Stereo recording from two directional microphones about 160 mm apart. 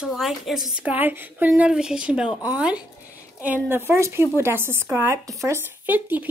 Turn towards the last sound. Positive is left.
turn(degrees=-10)  # may be behind; listen again after turning